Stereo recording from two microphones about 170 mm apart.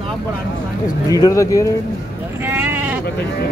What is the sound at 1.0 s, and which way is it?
Speech, 20° left (ahead or behind).